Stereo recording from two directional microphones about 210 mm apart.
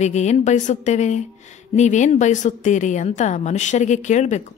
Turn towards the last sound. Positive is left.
turn(degrees=35)  # may be behind; listen again after turning